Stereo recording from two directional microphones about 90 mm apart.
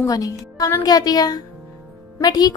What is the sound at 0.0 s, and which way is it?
Speech, 40° left (ahead or behind).